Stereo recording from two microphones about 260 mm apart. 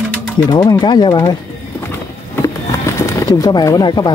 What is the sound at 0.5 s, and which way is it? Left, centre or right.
Speech, centre.